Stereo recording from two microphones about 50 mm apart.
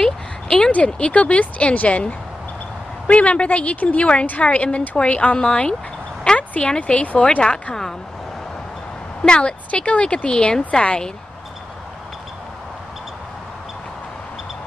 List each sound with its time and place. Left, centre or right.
0.0 s a sound: centre
0.8 s a woman's voice: left
9.2 s speech: centre